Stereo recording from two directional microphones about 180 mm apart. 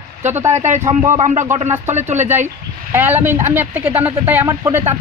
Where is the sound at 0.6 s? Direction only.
40° right (ahead or behind).